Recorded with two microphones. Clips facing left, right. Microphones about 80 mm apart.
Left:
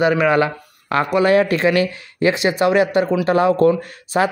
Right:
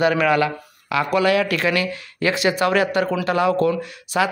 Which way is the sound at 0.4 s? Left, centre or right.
Left.